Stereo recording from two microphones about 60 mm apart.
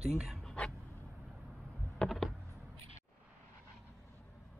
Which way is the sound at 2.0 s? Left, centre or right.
Centre.